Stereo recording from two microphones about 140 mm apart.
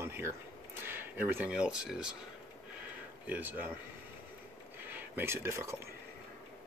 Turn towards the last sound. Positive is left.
turn(degrees=-20)  # may be behind; listen again after turning